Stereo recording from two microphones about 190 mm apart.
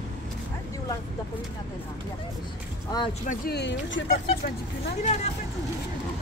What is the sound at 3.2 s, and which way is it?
Speech, 55° left (ahead or behind).